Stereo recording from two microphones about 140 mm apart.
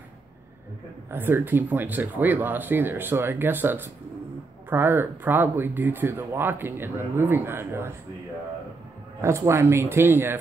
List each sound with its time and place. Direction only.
1.1 s speech: 15° right (ahead or behind)
9.5 s speech: 20° right (ahead or behind)